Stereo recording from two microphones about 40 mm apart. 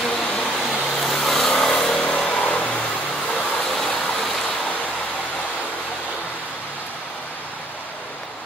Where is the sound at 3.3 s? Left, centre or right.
Centre.